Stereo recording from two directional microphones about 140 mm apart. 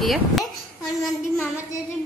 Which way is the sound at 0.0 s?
Centre (ahead or behind).